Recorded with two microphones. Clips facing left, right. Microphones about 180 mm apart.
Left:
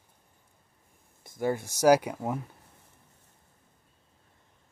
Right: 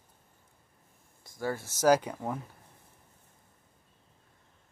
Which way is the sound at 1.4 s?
15° left (ahead or behind).